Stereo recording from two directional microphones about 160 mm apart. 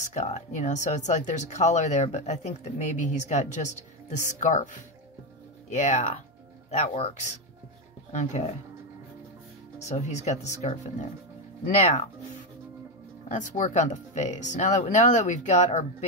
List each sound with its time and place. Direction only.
0.0 s speech: 45° left (ahead or behind)
9.8 s speech: 45° left (ahead or behind)
13.3 s speech: 50° left (ahead or behind)